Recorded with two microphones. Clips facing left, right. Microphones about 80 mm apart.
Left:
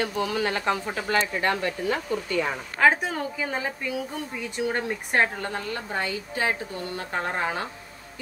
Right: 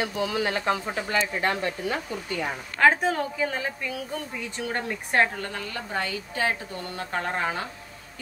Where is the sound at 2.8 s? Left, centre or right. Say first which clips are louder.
Right 1 dB; centre.